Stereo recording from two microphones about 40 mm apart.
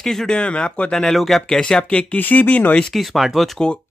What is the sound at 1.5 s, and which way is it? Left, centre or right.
Speech, centre.